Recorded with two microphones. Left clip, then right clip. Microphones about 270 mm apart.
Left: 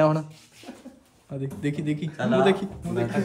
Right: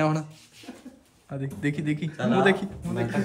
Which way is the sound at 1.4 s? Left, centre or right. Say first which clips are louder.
Even; centre.